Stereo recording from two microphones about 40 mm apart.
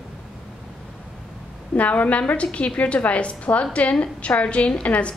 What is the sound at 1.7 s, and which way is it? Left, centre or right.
A woman's voice, left.